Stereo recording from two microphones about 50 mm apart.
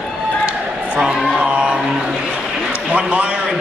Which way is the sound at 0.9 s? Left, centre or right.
Centre.